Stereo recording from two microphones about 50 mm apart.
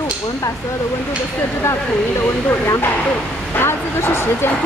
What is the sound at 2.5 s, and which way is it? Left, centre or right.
Speech, left.